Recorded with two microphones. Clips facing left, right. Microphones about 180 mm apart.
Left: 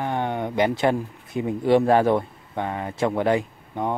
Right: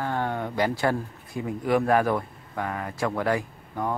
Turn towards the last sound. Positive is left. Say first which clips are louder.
# left 3 dB
turn(degrees=20)  # may be behind; listen again after turning